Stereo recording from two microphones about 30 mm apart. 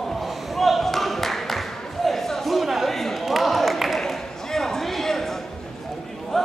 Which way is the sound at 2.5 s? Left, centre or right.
Centre.